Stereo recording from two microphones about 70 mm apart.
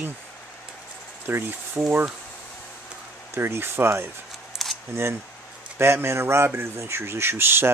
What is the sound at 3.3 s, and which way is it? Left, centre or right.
Speech, right.